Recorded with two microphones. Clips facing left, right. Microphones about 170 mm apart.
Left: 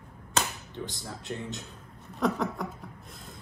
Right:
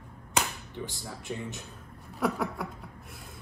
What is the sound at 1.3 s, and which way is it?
Speech, 5° right (ahead or behind).